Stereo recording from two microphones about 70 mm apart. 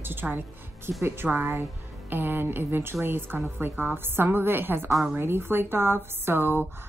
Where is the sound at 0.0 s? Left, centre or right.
Right.